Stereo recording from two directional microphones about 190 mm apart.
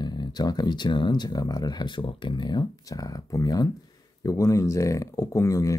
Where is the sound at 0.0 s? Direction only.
20° left (ahead or behind).